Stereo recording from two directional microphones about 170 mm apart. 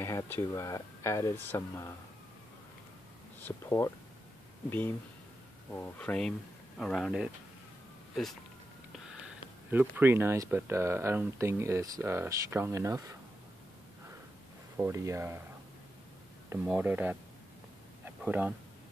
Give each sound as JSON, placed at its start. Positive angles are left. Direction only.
{"t": 0.0, "sound": "speech", "side_deg": 15}
{"t": 3.3, "sound": "speech", "side_deg": 15}
{"t": 9.7, "sound": "speech", "side_deg": -10}
{"t": 14.8, "sound": "speech", "side_deg": -15}
{"t": 16.6, "sound": "speech", "side_deg": -10}
{"t": 18.0, "sound": "a sound", "side_deg": -10}